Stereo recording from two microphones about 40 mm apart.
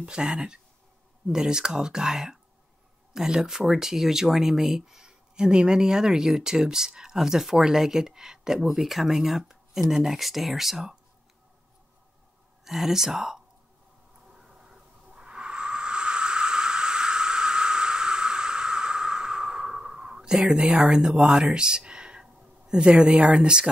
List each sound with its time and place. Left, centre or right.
0.0 s speech: right
12.6 s speech: centre
14.3 s a sound: centre
20.6 s speech: right